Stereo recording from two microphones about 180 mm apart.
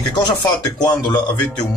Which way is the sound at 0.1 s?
25° left (ahead or behind).